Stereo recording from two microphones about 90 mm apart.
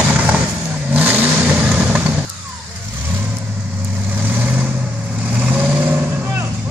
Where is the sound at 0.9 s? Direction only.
20° right (ahead or behind).